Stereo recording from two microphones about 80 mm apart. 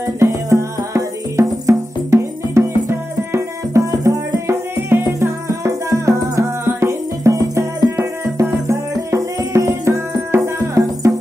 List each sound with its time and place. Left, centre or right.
0.0 s music: right
5.6 s music: right